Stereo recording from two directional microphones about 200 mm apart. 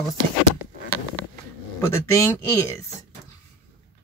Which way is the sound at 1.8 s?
15° left (ahead or behind).